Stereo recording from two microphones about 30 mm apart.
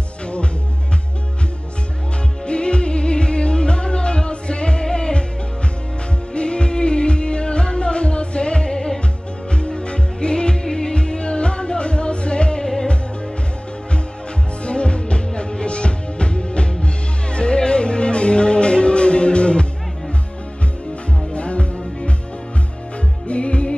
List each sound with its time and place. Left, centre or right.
2.4 s music: left
6.3 s music: left
11.0 s music: left
14.6 s music: left
21.3 s music: left
23.2 s music: left